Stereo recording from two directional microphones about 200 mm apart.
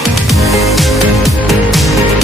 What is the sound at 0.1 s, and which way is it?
Music, centre (ahead or behind).